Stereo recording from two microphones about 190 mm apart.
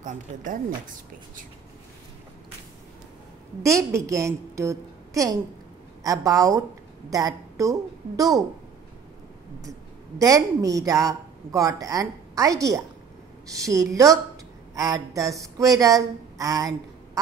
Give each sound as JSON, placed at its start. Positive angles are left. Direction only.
{"t": 0.0, "sound": "speech", "side_deg": -45}
{"t": 3.6, "sound": "a woman's voice", "side_deg": -15}
{"t": 9.7, "sound": "a woman's voice", "side_deg": -20}